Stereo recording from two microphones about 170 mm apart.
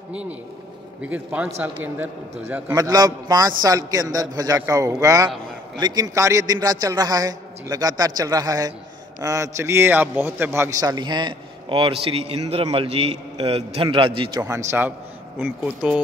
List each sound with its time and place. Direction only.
0.1 s speech: 5° right (ahead or behind)
2.7 s a man's voice: 20° right (ahead or behind); by 16.0 s 5° right (ahead or behind)